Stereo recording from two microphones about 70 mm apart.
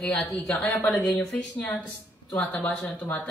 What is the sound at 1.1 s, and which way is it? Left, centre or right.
A woman's voice, left.